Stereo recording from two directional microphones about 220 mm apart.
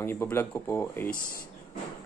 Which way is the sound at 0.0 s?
10° left (ahead or behind).